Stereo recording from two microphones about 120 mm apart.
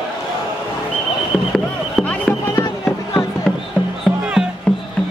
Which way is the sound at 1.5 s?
5° left (ahead or behind).